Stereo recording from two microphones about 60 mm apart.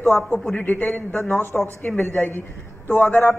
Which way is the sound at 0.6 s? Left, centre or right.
Left.